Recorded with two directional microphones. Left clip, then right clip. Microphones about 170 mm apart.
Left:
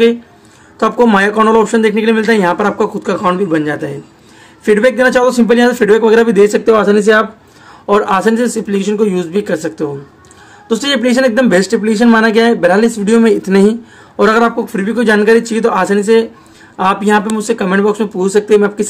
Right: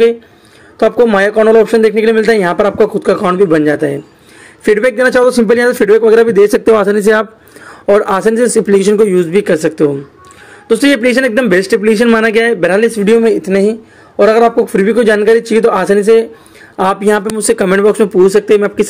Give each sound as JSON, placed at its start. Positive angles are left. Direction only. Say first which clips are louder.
{"t": 0.7, "sound": "a man's voice", "louder": "right 2 dB", "side_deg": -20}
{"t": 7.8, "sound": "speech", "louder": "right 2 dB", "side_deg": -25}
{"t": 14.7, "sound": "speech", "louder": "right 4 dB", "side_deg": -25}